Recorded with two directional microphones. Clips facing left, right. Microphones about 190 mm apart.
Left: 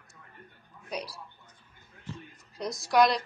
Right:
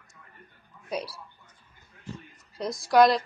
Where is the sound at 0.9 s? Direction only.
Centre (ahead or behind).